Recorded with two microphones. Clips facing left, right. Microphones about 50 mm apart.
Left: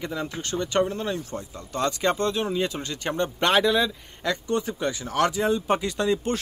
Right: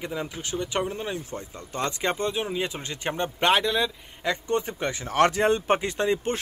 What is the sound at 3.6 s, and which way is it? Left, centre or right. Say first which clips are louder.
Speech: left 4 dB; centre.